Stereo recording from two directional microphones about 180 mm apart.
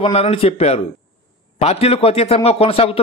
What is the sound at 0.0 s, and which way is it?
Speech, 35° left (ahead or behind).